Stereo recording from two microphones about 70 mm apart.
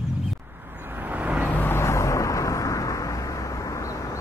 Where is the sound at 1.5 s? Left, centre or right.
Left.